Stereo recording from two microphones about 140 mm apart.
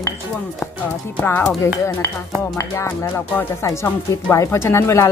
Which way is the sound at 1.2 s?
15° left (ahead or behind).